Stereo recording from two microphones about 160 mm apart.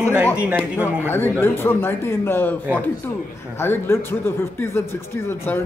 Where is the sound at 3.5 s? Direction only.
15° left (ahead or behind).